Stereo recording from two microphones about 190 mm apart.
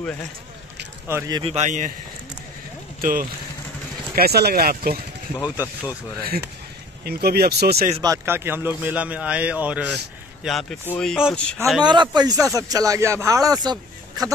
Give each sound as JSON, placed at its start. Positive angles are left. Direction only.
{"t": 1.0, "sound": "a man's voice", "side_deg": -15}
{"t": 1.4, "sound": "a man's voice", "side_deg": -35}
{"t": 3.0, "sound": "speech", "side_deg": -45}
{"t": 5.4, "sound": "speech", "side_deg": 20}
{"t": 7.1, "sound": "speech", "side_deg": -55}
{"t": 8.0, "sound": "a man's voice", "side_deg": -15}
{"t": 11.8, "sound": "speech", "side_deg": -25}